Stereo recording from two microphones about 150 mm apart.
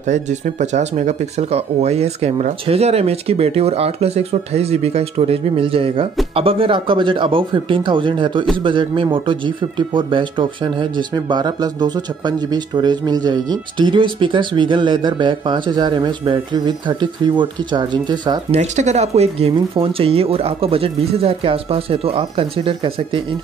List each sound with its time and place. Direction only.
0.0 s speech: 50° right (ahead or behind); by 18.4 s 30° right (ahead or behind)
18.5 s speech: 50° right (ahead or behind)